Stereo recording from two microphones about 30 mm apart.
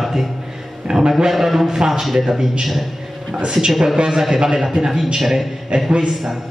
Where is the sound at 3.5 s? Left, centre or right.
Right.